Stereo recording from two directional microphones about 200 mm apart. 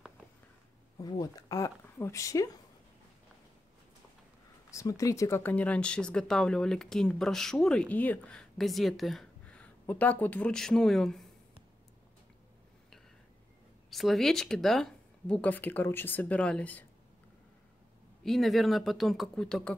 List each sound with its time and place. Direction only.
0.9 s speech: 20° left (ahead or behind)
4.6 s speech: 15° left (ahead or behind)
13.8 s speech: centre (ahead or behind)
18.2 s speech: centre (ahead or behind)